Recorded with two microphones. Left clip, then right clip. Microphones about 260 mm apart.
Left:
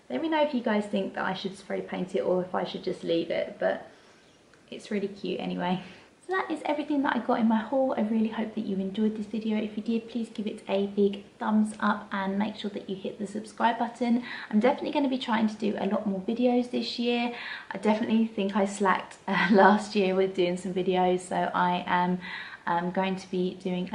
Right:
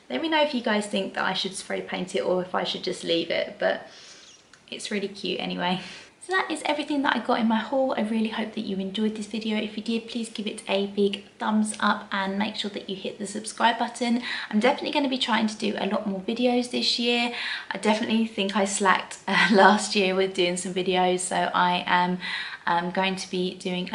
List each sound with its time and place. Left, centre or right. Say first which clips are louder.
0.1 s speech: right 3 dB; centre
2.6 s speech: right 3 dB; centre
4.8 s speech: right 3 dB; centre